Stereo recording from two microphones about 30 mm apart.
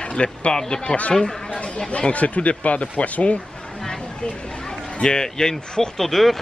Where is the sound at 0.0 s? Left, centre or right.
Left.